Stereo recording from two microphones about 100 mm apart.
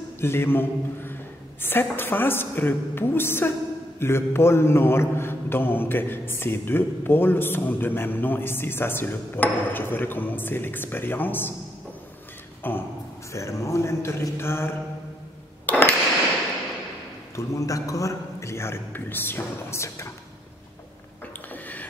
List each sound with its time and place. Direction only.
0.2 s a man's voice: 25° left (ahead or behind)
12.6 s a man's voice: 20° left (ahead or behind)
13.3 s a man's voice: 30° left (ahead or behind)
15.6 s cash register: 15° left (ahead or behind)
17.4 s a man's voice: 35° left (ahead or behind)
21.5 s a sound: 15° left (ahead or behind)